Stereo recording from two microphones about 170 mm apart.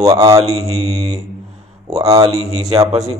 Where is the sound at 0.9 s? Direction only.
40° right (ahead or behind).